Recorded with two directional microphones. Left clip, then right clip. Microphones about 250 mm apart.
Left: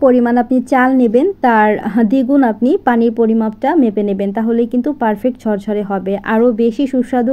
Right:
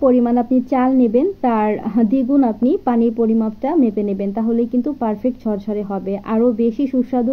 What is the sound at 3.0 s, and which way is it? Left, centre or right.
Speech, left.